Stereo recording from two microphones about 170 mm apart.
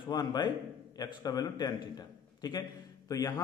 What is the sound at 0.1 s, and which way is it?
A man's voice, 25° left (ahead or behind).